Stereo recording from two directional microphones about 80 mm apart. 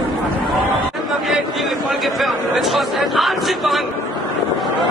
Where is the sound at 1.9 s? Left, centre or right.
Centre.